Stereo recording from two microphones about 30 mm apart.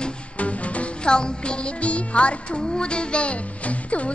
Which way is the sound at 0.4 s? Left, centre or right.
Left.